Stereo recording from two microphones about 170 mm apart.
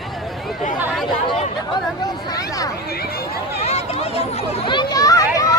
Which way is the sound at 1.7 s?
20° left (ahead or behind).